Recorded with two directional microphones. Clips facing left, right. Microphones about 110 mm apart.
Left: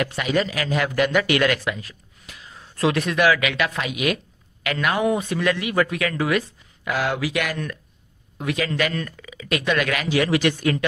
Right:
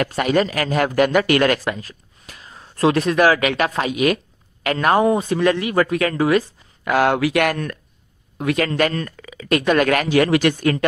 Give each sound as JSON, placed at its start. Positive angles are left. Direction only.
{"t": 0.0, "sound": "speech", "side_deg": -45}
{"t": 6.8, "sound": "speech", "side_deg": -55}